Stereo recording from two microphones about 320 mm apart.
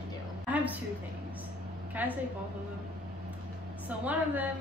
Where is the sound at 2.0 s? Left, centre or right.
Centre.